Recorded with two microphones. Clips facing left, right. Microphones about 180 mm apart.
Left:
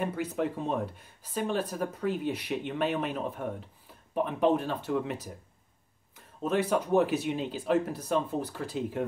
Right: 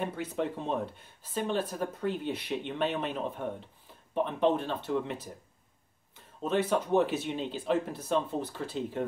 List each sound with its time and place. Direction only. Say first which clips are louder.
0.0 s speech: left 2 dB; 5° left (ahead or behind)